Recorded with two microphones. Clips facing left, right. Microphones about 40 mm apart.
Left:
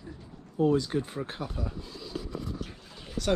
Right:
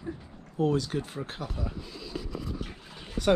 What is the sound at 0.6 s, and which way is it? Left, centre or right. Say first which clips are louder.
Speech: left 2 dB; right.